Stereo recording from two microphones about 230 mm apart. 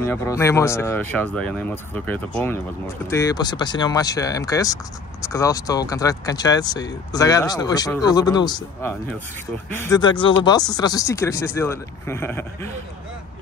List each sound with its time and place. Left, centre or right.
0.0 s speech: centre